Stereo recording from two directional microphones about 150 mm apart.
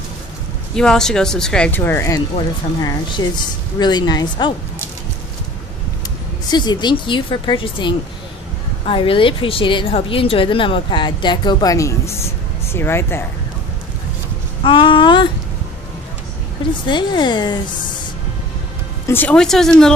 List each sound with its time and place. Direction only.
0.7 s speech: 5° left (ahead or behind); by 4.6 s 30° left (ahead or behind)
6.5 s a woman's voice: 30° left (ahead or behind)
14.6 s a woman's voice: 35° left (ahead or behind)
16.8 s speech: 30° left (ahead or behind)
19.0 s speech: 10° left (ahead or behind)